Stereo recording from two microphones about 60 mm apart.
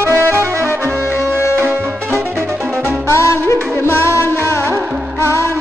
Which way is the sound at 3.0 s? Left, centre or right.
Left.